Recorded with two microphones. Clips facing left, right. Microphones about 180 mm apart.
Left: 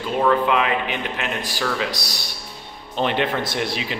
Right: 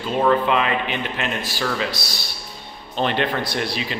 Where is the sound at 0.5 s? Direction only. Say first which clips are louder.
Even; 10° left (ahead or behind).